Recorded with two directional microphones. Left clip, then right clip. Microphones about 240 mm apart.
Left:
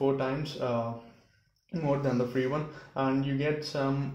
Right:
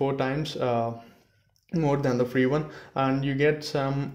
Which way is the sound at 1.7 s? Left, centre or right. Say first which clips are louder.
Right 4 dB; right.